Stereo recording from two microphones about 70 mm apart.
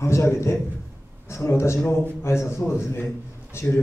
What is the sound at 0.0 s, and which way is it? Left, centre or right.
A man's voice, left.